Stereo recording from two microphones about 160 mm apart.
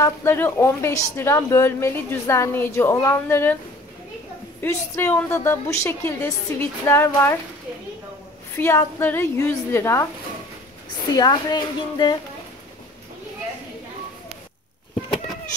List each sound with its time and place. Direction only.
0.0 s a woman's voice: 15° left (ahead or behind)
4.6 s a woman's voice: 15° left (ahead or behind)
8.5 s a woman's voice: 15° left (ahead or behind)
11.1 s speech: 25° left (ahead or behind)